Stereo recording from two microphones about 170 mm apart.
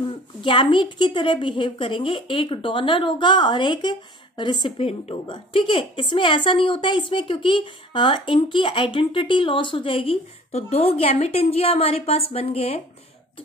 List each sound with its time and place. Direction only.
0.4 s a woman's voice: 30° left (ahead or behind)